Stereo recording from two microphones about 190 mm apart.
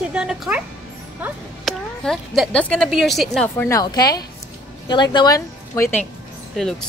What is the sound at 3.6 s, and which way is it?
A woman's voice, 20° left (ahead or behind).